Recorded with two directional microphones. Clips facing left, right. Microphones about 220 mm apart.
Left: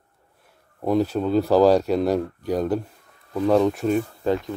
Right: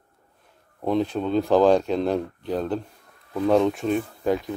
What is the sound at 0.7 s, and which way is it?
Speech, 5° left (ahead or behind).